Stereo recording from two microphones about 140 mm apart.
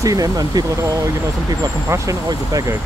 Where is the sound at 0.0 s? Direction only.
25° right (ahead or behind).